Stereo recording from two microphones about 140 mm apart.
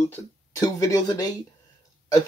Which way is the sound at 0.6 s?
25° left (ahead or behind).